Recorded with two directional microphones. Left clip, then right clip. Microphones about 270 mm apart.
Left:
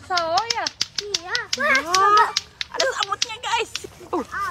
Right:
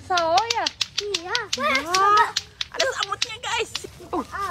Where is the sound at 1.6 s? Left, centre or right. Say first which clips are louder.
Left 3 dB; centre.